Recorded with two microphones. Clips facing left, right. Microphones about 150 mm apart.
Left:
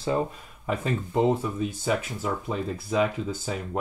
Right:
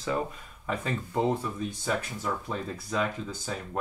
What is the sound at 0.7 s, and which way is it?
Speech, 15° left (ahead or behind).